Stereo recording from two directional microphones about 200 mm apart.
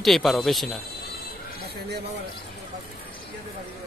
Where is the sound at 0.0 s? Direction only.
Centre (ahead or behind).